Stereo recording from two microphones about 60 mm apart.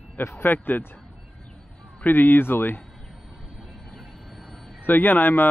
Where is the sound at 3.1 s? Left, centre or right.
Centre.